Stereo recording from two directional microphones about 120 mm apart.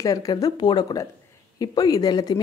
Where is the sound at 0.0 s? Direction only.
30° left (ahead or behind).